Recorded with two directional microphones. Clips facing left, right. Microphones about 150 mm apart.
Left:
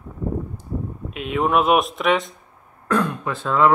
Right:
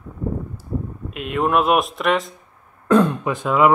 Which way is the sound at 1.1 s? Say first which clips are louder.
Even; centre (ahead or behind).